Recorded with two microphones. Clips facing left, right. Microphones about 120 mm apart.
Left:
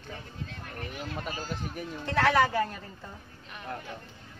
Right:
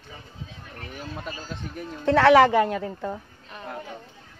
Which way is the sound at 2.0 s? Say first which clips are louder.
Right 9 dB; 80° right.